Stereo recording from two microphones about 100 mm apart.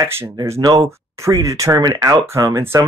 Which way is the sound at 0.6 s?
40° right (ahead or behind).